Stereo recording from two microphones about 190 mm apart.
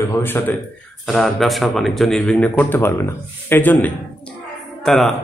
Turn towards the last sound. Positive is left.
turn(degrees=0)  # may be behind; listen again after turning